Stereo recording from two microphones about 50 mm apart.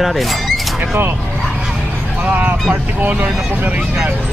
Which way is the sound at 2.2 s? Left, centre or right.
Right.